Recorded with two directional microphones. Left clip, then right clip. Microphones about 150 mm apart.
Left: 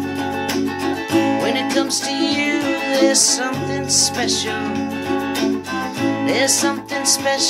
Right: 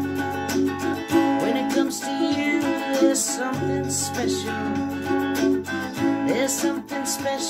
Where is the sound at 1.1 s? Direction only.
30° left (ahead or behind).